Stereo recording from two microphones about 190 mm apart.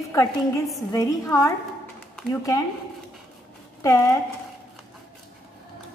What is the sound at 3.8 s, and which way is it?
Speech, 15° left (ahead or behind).